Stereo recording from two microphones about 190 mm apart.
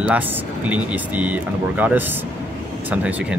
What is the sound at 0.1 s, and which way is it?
Speech, 5° right (ahead or behind).